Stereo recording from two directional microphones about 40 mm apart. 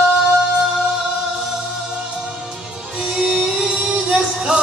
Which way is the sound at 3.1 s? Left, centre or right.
Centre.